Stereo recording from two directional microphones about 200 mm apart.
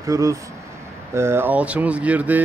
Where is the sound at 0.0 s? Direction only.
15° right (ahead or behind).